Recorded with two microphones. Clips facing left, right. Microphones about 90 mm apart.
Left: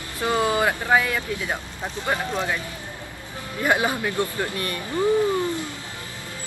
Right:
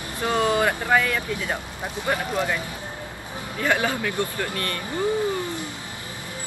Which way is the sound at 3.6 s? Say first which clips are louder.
Left 1 dB; 20° left (ahead or behind).